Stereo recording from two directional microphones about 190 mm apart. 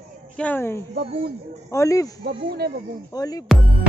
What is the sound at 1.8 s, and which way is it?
Speech, 15° left (ahead or behind).